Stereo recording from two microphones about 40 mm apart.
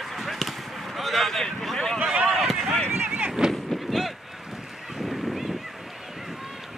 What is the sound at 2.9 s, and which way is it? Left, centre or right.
Vehicle, right.